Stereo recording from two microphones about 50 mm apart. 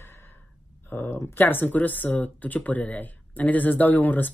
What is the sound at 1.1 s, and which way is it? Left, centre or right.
Speech, left.